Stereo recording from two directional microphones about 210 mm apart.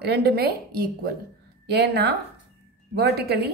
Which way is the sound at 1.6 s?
50° right (ahead or behind).